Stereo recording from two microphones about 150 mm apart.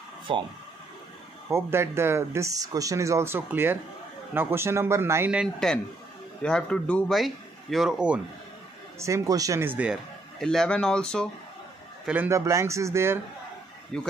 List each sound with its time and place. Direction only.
0.3 s speech: 40° right (ahead or behind)
1.5 s speech: 15° right (ahead or behind)
6.4 s speech: 5° left (ahead or behind)
9.0 s speech: 20° right (ahead or behind)
10.4 s speech: 5° left (ahead or behind)
12.1 s speech: 15° right (ahead or behind)
13.9 s speech: 5° left (ahead or behind)